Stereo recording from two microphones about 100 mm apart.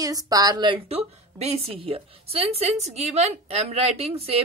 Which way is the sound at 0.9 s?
90° right.